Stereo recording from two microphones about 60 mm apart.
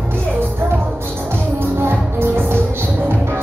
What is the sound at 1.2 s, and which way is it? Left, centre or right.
Music, right.